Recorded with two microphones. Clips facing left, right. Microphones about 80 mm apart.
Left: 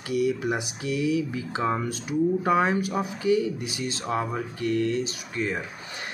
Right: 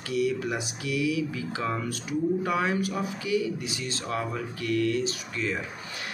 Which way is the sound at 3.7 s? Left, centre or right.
Centre.